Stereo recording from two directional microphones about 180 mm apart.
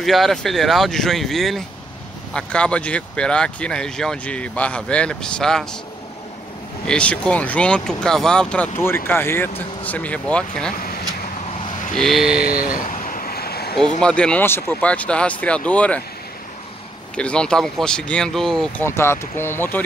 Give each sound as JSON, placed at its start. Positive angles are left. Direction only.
{"t": 0.0, "sound": "speech", "side_deg": 0}
{"t": 6.9, "sound": "speech", "side_deg": 5}
{"t": 11.9, "sound": "speech", "side_deg": 0}
{"t": 12.6, "sound": "vehicle", "side_deg": 50}
{"t": 14.0, "sound": "speech", "side_deg": 5}
{"t": 17.2, "sound": "speech", "side_deg": 5}
{"t": 18.9, "sound": "speech", "side_deg": 15}